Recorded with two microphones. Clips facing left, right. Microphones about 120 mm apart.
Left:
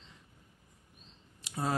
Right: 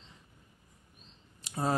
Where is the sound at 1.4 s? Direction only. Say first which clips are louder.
Right 3 dB; 35° right (ahead or behind).